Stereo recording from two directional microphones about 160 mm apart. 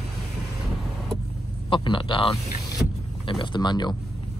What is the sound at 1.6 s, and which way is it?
A man's voice, 30° left (ahead or behind).